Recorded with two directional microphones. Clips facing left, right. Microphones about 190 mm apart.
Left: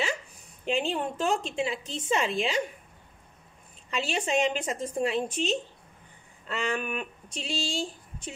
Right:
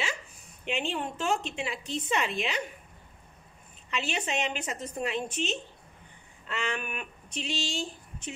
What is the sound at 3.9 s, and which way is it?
A woman's voice, 30° left (ahead or behind).